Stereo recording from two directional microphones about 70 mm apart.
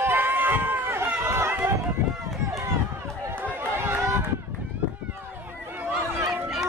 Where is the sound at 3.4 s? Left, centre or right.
Right.